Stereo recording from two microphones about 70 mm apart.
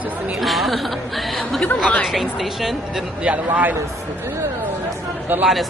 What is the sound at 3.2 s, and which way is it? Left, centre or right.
Speech, right.